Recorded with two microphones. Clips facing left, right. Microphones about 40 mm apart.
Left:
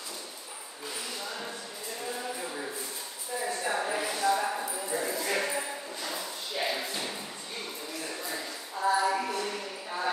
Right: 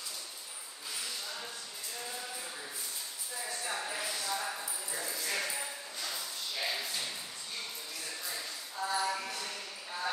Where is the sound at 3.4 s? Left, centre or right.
Left.